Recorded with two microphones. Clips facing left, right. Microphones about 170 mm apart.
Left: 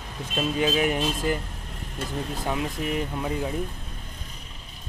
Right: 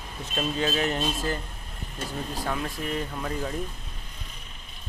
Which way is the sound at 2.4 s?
15° left (ahead or behind).